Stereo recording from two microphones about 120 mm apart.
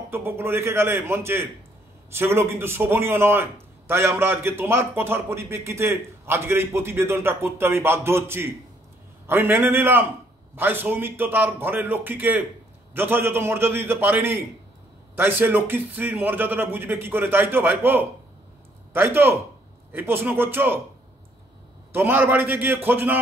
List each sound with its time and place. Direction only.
0.1 s a man's voice: 20° right (ahead or behind)
21.9 s a man's voice: 15° right (ahead or behind)